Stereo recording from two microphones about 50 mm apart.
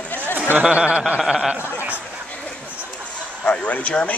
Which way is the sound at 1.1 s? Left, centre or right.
Centre.